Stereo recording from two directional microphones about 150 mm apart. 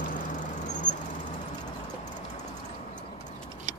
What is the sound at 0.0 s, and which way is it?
Vehicle, 65° left (ahead or behind).